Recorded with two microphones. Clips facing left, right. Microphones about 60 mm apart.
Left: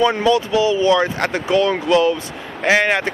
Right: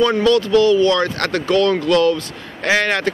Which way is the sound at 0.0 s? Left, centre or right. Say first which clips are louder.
Right 1 dB; centre.